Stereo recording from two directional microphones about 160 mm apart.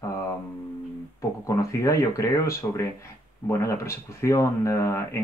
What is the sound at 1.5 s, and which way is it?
Speech, 20° left (ahead or behind).